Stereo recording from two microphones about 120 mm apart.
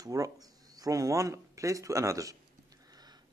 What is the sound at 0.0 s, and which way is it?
Speech, 30° right (ahead or behind).